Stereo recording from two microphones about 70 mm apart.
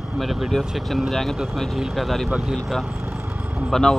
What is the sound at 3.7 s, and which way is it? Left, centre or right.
Speech, centre.